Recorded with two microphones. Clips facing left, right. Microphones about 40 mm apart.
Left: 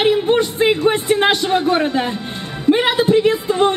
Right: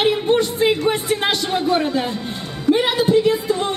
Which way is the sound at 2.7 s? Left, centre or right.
Left.